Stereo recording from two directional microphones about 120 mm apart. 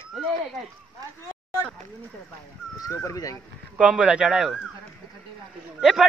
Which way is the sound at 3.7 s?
10° right (ahead or behind).